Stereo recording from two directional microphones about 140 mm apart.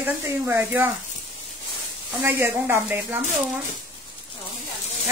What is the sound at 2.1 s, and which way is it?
Speech, 15° right (ahead or behind).